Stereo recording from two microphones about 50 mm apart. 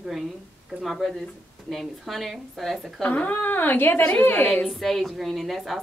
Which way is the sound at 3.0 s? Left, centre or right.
Left.